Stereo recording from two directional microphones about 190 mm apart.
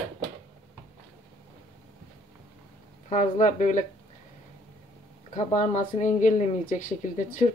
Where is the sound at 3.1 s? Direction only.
40° left (ahead or behind).